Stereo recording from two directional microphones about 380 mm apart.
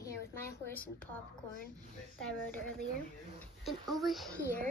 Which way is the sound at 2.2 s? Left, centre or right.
Centre.